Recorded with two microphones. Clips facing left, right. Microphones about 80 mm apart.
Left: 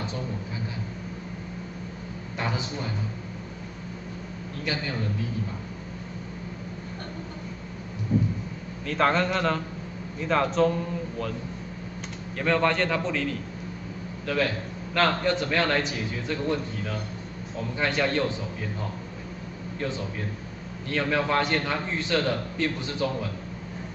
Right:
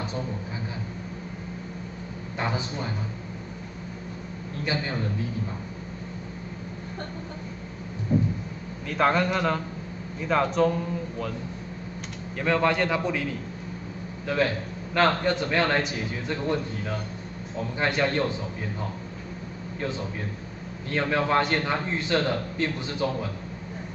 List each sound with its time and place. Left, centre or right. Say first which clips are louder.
2.3 s a man's voice: right 1 dB; right
8.8 s a man's voice: even; centre
12.4 s a man's voice: even; centre
20.9 s a man's voice: right 1 dB; right